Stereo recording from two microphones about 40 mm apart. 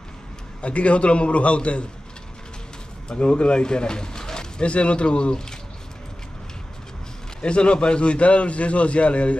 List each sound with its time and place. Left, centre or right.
0.6 s a man's voice: left
3.1 s speech: left
4.6 s speech: left
7.4 s a man's voice: left